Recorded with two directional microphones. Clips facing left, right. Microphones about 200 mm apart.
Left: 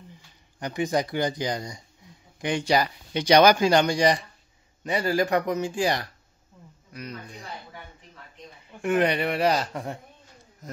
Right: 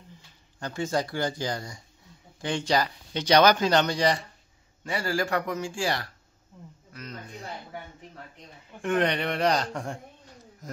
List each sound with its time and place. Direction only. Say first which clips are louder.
0.6 s a man's voice: left 3 dB; 15° left (ahead or behind)
8.8 s speech: left 2 dB; 10° left (ahead or behind)